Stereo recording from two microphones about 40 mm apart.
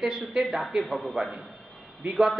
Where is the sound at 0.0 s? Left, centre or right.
Centre.